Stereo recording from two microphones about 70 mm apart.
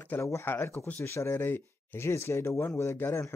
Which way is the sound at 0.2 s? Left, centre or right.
Left.